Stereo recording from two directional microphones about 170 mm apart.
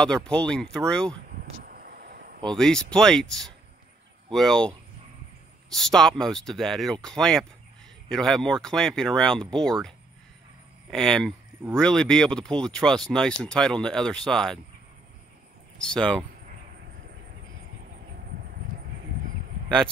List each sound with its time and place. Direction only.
0.0 s speech: 5° left (ahead or behind)
1.4 s a sound: 60° right (ahead or behind)
2.4 s speech: 5° left (ahead or behind)
15.8 s speech: 5° left (ahead or behind)